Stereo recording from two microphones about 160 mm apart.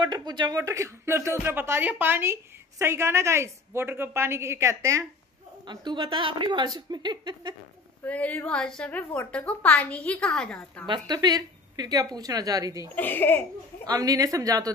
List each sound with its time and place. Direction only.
0.0 s speech: 25° right (ahead or behind)
5.7 s a woman's voice: 30° right (ahead or behind)
8.0 s a woman's voice: 10° left (ahead or behind)
10.9 s a woman's voice: 25° right (ahead or behind)
12.9 s a woman's voice: 10° left (ahead or behind)
13.8 s a woman's voice: 25° right (ahead or behind)